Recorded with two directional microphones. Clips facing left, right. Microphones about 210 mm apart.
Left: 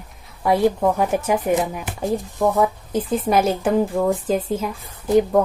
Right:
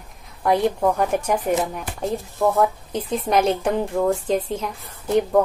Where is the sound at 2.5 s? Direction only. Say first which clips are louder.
Left 1 dB; centre (ahead or behind).